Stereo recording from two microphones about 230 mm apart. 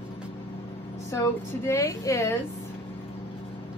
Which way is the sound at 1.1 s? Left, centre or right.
Centre.